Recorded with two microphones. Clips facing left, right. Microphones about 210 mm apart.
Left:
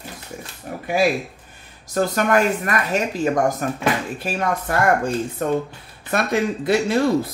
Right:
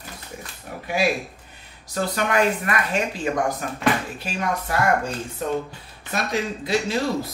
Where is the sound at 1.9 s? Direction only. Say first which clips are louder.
Left 4 dB; 45° left (ahead or behind).